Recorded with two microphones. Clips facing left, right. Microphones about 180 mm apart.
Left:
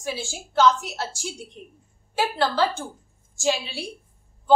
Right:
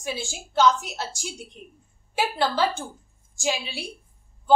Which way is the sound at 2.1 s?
15° right (ahead or behind).